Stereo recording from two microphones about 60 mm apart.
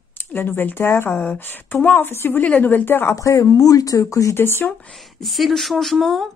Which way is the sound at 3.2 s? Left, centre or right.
Left.